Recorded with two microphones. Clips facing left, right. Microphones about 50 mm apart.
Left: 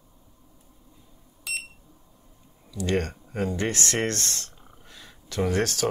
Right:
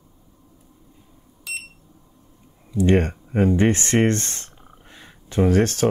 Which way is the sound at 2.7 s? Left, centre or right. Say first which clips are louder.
Right 8 dB; right.